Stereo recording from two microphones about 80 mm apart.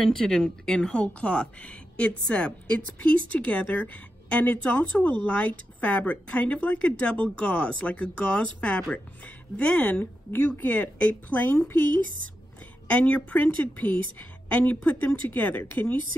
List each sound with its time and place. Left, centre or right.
0.2 s a woman's voice: centre
10.3 s a woman's voice: left
12.8 s a woman's voice: centre